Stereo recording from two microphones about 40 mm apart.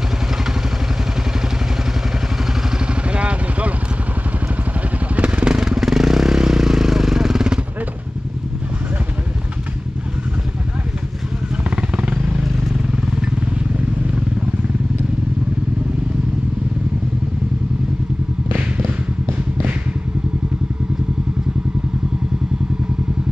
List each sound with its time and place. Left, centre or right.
3.1 s vehicle: right
5.1 s vehicle: right; by 7.4 s centre
11.7 s vehicle: right